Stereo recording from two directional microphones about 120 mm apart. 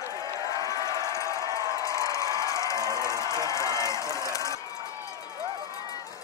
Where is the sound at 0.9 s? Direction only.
30° right (ahead or behind).